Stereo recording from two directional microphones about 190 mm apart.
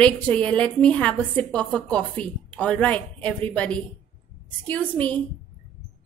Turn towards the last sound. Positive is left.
turn(degrees=10)  # may be behind; listen again after turning